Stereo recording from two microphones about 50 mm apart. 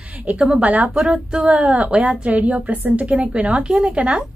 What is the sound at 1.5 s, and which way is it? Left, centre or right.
A woman's voice, right.